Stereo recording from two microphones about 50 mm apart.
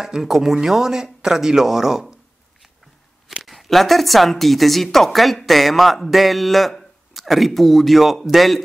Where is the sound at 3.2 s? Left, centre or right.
Centre.